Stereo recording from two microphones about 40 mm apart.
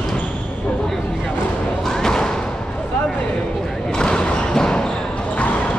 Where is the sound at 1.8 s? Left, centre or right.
Centre.